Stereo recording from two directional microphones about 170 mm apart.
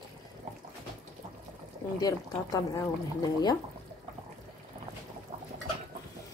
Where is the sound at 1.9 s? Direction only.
20° left (ahead or behind).